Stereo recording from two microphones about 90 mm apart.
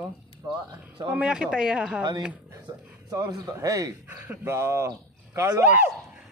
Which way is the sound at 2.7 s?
45° right (ahead or behind).